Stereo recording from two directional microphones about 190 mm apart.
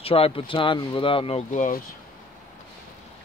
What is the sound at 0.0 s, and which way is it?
Speech, 30° left (ahead or behind).